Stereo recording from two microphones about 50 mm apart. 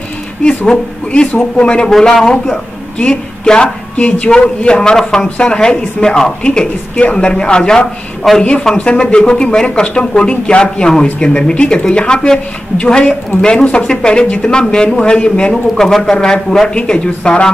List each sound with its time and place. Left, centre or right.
0.7 s speech: centre
1.9 s a woman's voice: centre
3.9 s speech: left
4.7 s a woman's voice: centre
15.5 s a woman's voice: centre